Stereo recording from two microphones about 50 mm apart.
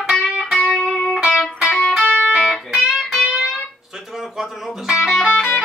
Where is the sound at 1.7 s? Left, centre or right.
Left.